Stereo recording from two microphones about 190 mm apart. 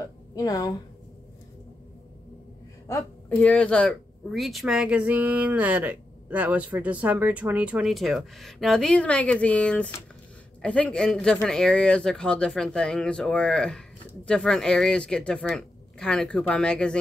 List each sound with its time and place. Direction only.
0.0 s a woman's voice: 20° left (ahead or behind)
2.9 s a woman's voice: 15° left (ahead or behind)